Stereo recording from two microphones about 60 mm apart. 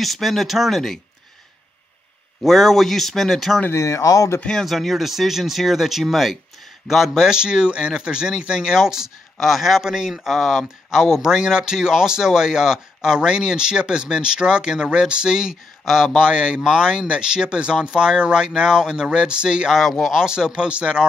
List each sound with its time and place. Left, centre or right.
0.0 s speech: centre
2.4 s speech: centre
3.7 s speech: left
4.6 s speech: centre
7.2 s speech: centre
19.7 s speech: centre
20.2 s speech: centre